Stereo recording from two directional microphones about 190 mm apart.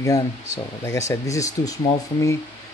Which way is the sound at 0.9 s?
15° left (ahead or behind).